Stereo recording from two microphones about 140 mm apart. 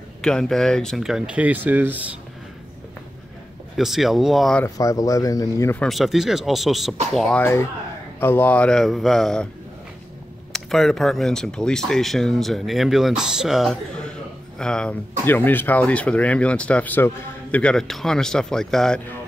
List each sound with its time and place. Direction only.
0.2 s speech: 5° left (ahead or behind); by 2.0 s 10° right (ahead or behind)
3.7 s speech: centre (ahead or behind)
4.6 s speech: 25° left (ahead or behind)
5.8 s speech: centre (ahead or behind)
10.5 s speech: 5° left (ahead or behind)